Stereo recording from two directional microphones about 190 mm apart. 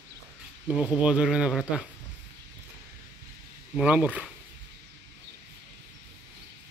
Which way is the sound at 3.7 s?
5° right (ahead or behind).